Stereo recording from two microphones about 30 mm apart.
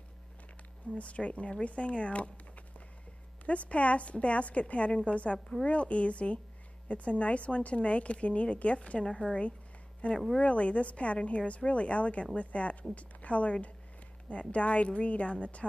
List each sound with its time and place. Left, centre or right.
0.9 s speech: left
10.0 s speech: left